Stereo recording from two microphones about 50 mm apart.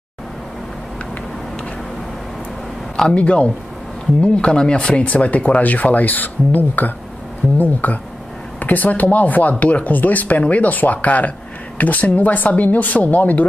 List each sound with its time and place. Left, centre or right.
3.2 s speech: left